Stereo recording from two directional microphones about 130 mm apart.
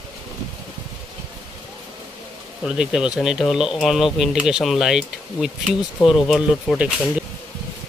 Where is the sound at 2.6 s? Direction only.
5° right (ahead or behind).